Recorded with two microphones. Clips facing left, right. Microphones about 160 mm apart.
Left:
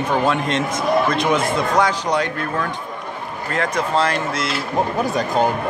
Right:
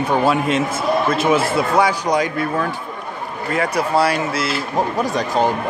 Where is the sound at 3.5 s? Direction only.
10° right (ahead or behind).